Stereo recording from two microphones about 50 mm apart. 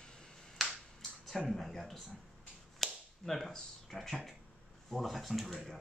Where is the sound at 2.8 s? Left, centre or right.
Centre.